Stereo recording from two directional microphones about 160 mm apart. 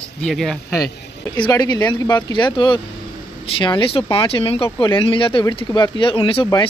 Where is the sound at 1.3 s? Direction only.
25° left (ahead or behind).